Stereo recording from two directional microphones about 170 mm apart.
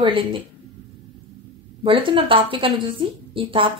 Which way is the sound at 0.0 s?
30° right (ahead or behind).